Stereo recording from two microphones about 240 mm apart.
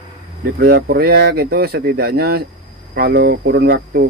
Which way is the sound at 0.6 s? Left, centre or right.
Right.